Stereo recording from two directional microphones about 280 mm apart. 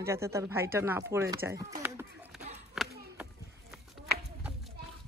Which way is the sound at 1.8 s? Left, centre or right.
Centre.